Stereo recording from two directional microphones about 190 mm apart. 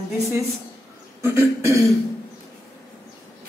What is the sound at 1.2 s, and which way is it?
Cough, 15° right (ahead or behind).